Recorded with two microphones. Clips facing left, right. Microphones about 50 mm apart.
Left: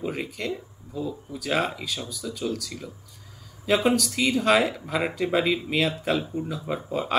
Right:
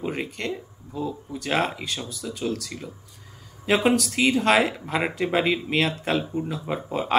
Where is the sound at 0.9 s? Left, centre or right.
Centre.